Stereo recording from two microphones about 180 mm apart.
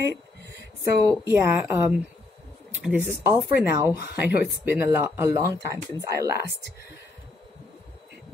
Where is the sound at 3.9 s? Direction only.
65° left (ahead or behind).